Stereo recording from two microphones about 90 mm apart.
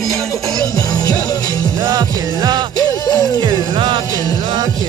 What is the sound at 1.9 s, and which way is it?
Music, 50° right (ahead or behind).